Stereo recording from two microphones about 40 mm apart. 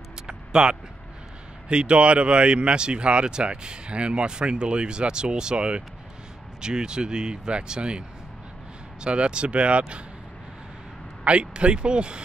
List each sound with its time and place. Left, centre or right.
0.3 s vehicle: right
1.7 s speech: right
9.0 s speech: right
11.2 s speech: right